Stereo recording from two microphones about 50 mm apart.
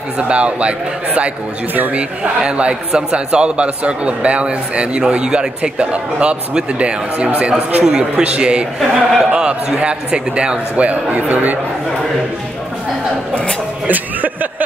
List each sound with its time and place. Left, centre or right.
0.2 s a man's voice: right
1.7 s a man's voice: right
2.0 s a man's voice: right
8.7 s a man's voice: centre
9.3 s a man's voice: centre
10.9 s a man's voice: right
13.3 s a man's voice: left
13.8 s music: right